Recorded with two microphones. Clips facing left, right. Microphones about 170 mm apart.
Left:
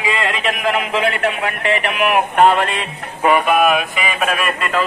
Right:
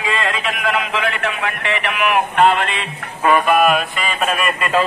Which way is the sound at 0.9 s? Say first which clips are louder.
Left 3 dB; 35° left (ahead or behind).